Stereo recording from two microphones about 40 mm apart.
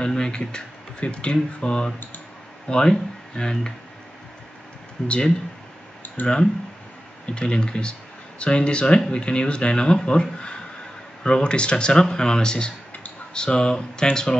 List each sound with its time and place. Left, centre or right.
0.0 s speech: centre
5.0 s speech: left
6.0 s clicking: left
7.3 s speech: left
11.2 s speech: left